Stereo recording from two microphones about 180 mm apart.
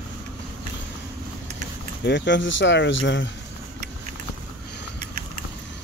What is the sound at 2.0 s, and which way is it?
Speech, 80° left.